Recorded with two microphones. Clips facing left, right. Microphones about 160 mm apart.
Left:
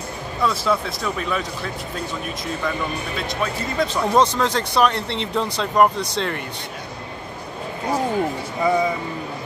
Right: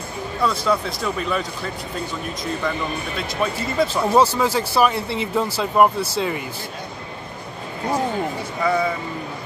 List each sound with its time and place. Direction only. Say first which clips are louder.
0.4 s speech: even; centre (ahead or behind)
3.7 s speech: right 1 dB; 5° right (ahead or behind)
8.6 s speech: left 1 dB; 15° left (ahead or behind)